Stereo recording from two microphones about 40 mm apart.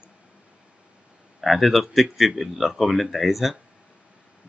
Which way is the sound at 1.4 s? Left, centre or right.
Centre.